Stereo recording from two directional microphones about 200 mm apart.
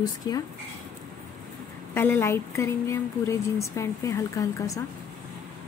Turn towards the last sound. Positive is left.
turn(degrees=15)  # may be behind; listen again after turning